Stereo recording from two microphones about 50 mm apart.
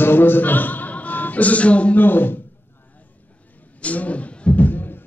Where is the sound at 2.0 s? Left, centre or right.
Left.